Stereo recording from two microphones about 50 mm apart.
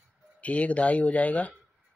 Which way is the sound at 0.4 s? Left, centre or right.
Left.